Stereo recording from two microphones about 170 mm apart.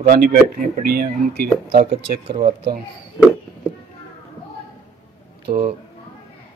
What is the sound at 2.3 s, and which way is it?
Speech, 25° right (ahead or behind).